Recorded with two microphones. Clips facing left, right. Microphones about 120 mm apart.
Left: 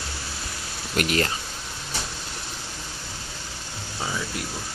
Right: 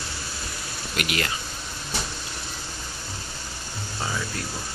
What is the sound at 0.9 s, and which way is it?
Speech, 40° left (ahead or behind).